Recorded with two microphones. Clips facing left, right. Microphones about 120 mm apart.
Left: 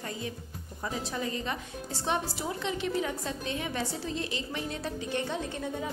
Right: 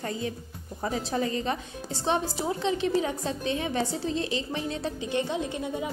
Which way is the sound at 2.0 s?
25° right (ahead or behind).